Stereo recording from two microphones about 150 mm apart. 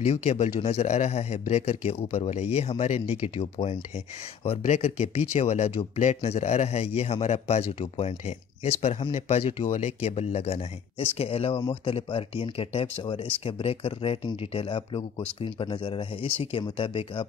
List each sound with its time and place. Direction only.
0.0 s speech: 45° left (ahead or behind)
4.5 s speech: 45° left (ahead or behind)